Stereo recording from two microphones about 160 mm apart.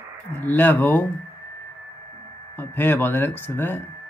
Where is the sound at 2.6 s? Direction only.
10° left (ahead or behind).